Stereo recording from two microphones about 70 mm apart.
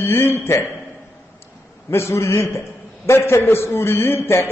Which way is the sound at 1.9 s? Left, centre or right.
Left.